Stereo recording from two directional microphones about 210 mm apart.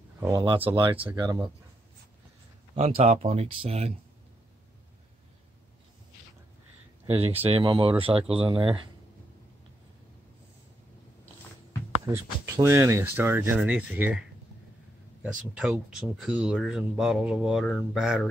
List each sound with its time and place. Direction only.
0.2 s speech: 20° right (ahead or behind)
2.7 s speech: 30° right (ahead or behind)
7.1 s speech: 25° right (ahead or behind)
12.4 s speech: 15° right (ahead or behind)
15.5 s speech: 5° right (ahead or behind)